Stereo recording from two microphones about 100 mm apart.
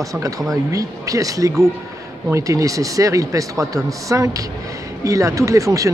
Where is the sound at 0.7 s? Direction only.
35° right (ahead or behind).